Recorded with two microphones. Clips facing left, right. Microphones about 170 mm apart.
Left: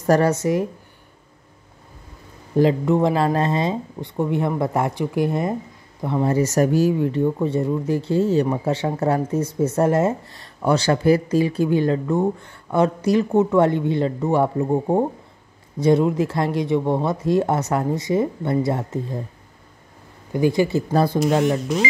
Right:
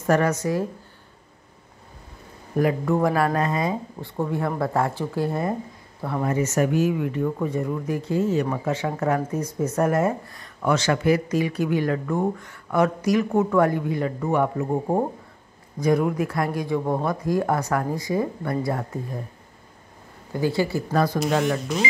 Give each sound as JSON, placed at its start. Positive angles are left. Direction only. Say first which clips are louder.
{"t": 0.0, "sound": "speech", "louder": "left 3 dB", "side_deg": 35}
{"t": 2.5, "sound": "speech", "louder": "left 4 dB", "side_deg": 25}
{"t": 6.2, "sound": "speech", "louder": "left 4 dB", "side_deg": 35}
{"t": 15.8, "sound": "speech", "louder": "left 4 dB", "side_deg": 25}
{"t": 20.3, "sound": "speech", "louder": "left 5 dB", "side_deg": 20}